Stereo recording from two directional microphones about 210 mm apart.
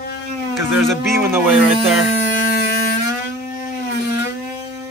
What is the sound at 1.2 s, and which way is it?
Speech, 10° right (ahead or behind).